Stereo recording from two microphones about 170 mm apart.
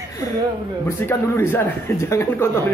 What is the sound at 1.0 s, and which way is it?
Speech, 10° left (ahead or behind).